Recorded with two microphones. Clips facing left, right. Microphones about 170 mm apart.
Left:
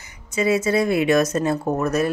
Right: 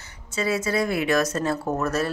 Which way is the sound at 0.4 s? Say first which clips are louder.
Left 5 dB; 20° left (ahead or behind).